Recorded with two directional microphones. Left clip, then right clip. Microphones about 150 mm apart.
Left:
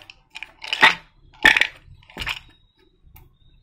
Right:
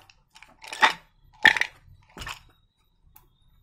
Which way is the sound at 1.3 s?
10° right (ahead or behind).